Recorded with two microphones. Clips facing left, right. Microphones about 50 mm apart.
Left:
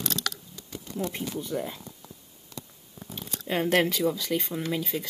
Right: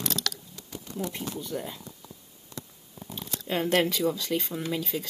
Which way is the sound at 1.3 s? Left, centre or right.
Left.